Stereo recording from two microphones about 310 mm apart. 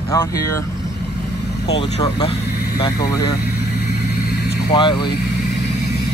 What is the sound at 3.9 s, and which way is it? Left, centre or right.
Vehicle, left.